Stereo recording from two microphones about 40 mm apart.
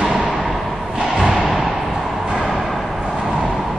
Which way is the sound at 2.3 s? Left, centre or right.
Centre.